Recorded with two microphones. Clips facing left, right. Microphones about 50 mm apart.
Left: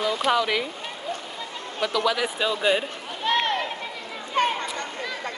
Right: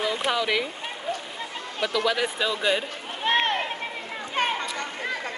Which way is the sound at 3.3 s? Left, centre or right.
Right.